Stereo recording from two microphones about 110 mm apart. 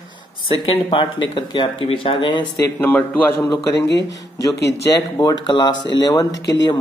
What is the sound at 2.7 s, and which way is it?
Speech, 20° left (ahead or behind).